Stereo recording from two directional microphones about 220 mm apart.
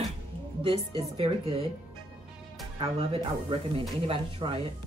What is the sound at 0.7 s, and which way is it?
Speech, 25° right (ahead or behind).